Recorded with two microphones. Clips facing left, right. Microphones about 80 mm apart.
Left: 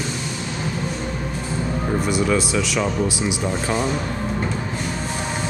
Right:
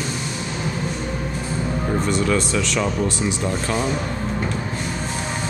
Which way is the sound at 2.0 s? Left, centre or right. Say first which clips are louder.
Left 1 dB; centre.